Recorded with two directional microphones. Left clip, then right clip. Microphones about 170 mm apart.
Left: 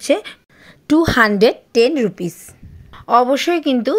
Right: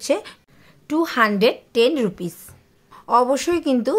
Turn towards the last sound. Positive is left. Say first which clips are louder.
# left 3 dB
turn(degrees=10)  # may be behind; listen again after turning